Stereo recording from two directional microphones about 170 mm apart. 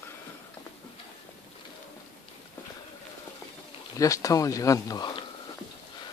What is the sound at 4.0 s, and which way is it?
Speech, 20° left (ahead or behind).